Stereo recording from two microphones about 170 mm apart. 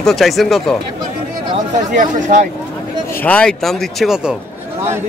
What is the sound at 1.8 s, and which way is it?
Speech, 45° right (ahead or behind).